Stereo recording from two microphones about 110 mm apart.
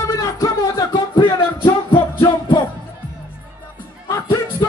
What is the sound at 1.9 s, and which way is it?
Music, 45° left (ahead or behind).